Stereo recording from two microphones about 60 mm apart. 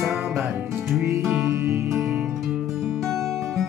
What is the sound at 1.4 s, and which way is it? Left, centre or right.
Music, right.